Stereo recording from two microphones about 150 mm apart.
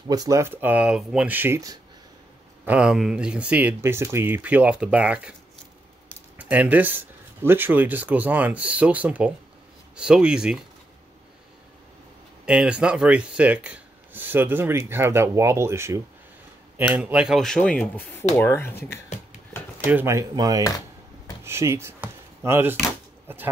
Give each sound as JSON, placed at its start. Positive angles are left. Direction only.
{"t": 0.1, "sound": "speech", "side_deg": -20}
{"t": 2.6, "sound": "speech", "side_deg": -10}
{"t": 6.3, "sound": "a man's voice", "side_deg": -10}
{"t": 12.4, "sound": "a man's voice", "side_deg": -5}
{"t": 19.8, "sound": "speech", "side_deg": -15}